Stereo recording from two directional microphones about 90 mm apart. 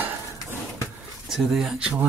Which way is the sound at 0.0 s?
25° right (ahead or behind).